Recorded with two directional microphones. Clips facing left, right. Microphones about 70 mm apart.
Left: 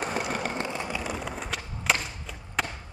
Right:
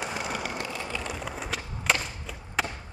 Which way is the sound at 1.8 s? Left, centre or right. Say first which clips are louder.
Even; centre.